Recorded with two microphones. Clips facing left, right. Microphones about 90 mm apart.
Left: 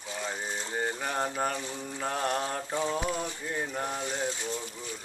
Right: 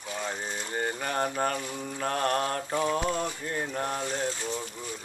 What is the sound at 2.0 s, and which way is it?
Mantra, 5° left (ahead or behind).